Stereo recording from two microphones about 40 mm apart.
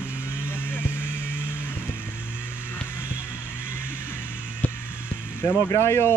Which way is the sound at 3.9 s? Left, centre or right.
Left.